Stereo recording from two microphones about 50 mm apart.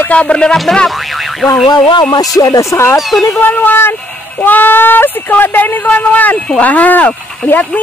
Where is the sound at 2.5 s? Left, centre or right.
Left.